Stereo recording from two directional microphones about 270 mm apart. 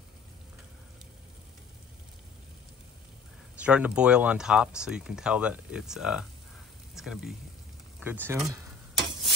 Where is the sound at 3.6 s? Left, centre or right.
Centre.